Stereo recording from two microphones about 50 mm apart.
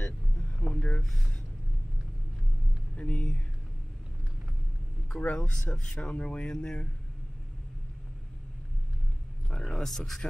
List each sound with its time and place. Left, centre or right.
0.7 s a sound: left
3.0 s speech: left
5.1 s speech: left
9.5 s speech: centre